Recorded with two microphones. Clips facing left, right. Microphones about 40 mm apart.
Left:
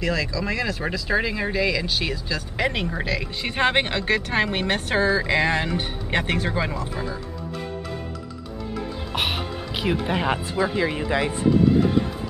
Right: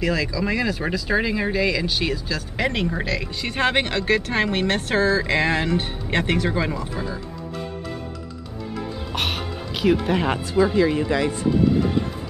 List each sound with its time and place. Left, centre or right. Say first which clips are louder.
0.0 s speech: right 2 dB; centre
3.4 s speech: even; centre
9.1 s music: left 1 dB; centre
10.5 s speech: right 5 dB; centre